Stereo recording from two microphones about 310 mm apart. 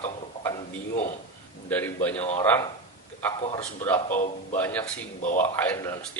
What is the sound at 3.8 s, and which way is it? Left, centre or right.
A man's voice, centre.